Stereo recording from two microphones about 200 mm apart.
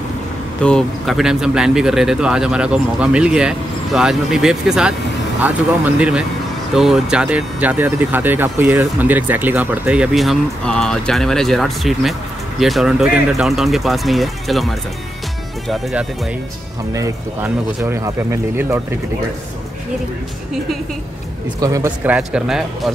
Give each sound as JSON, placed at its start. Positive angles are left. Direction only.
{"t": 0.7, "sound": "speech", "side_deg": 0}
{"t": 15.7, "sound": "speech", "side_deg": -5}
{"t": 16.9, "sound": "speech", "side_deg": -15}
{"t": 21.5, "sound": "speech", "side_deg": -15}